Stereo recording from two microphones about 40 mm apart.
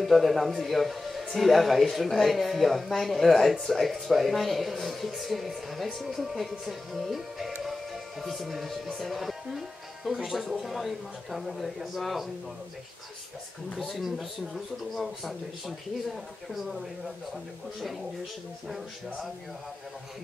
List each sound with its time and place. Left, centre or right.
0.0 s speech: centre
7.6 s music: centre
8.9 s speech: centre
13.7 s speech: centre